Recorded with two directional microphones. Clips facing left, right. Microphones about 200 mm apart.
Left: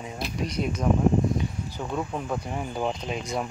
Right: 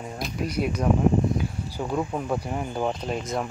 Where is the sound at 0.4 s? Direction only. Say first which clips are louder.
Right 2 dB; 5° right (ahead or behind).